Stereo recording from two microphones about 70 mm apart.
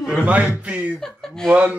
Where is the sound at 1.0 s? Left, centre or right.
Centre.